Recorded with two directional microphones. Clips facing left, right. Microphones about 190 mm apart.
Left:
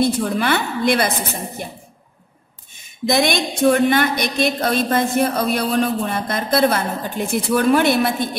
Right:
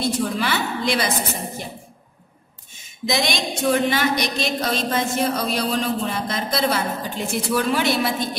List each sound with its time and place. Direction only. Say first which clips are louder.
0.0 s a woman's voice: left 4 dB; 55° left (ahead or behind)
2.8 s a woman's voice: left 5 dB; 55° left (ahead or behind)